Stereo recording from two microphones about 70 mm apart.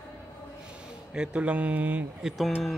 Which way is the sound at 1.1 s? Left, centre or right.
Centre.